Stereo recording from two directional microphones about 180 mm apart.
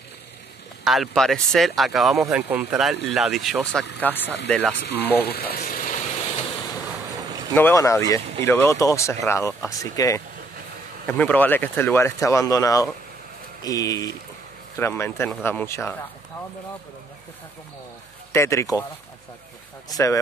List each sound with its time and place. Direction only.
0.8 s speech: centre (ahead or behind)
4.0 s speech: 10° left (ahead or behind)
5.2 s speech: 60° left (ahead or behind)
7.5 s speech: 15° left (ahead or behind)
18.3 s speech: 15° left (ahead or behind)
19.9 s speech: 20° left (ahead or behind)